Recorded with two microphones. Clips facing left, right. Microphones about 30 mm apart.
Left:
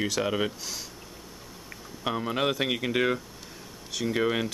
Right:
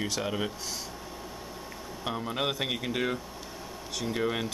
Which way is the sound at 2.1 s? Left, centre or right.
Centre.